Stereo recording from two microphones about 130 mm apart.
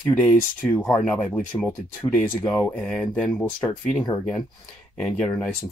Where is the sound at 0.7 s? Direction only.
15° left (ahead or behind).